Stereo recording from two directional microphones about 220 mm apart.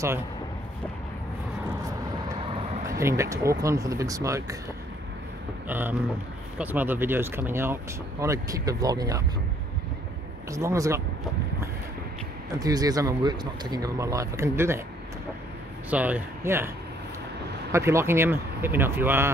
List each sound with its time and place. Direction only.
2.8 s speech: 15° right (ahead or behind)
5.7 s speech: 10° right (ahead or behind)
10.5 s speech: 15° right (ahead or behind)
12.5 s speech: 15° right (ahead or behind)
15.9 s speech: 5° right (ahead or behind)